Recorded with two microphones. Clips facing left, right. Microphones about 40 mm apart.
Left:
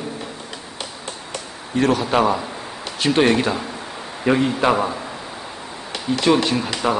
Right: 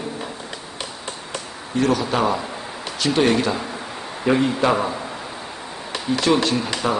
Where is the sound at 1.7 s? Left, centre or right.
Left.